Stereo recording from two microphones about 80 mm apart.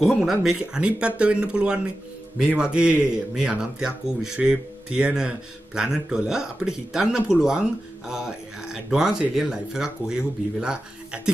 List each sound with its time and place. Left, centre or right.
0.0 s speech: centre